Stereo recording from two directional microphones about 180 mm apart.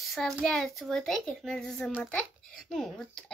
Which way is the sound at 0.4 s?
Centre (ahead or behind).